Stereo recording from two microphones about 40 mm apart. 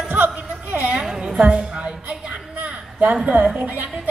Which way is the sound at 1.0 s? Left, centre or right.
Right.